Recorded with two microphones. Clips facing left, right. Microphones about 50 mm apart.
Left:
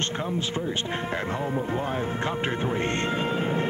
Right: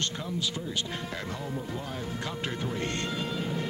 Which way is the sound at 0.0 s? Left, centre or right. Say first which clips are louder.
Left 4 dB; left.